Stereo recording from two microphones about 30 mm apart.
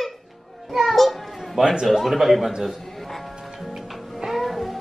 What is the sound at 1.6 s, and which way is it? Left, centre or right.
Speech, right.